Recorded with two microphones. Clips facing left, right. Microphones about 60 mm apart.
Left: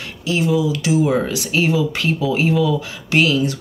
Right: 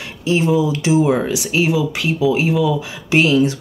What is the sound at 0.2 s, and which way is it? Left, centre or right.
Speech, right.